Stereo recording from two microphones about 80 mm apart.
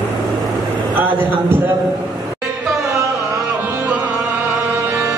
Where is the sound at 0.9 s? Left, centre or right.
Right.